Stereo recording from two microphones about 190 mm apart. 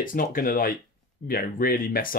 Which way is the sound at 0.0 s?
45° left (ahead or behind).